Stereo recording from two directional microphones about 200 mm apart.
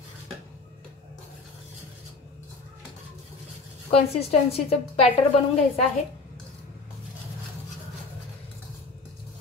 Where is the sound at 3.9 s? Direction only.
30° left (ahead or behind).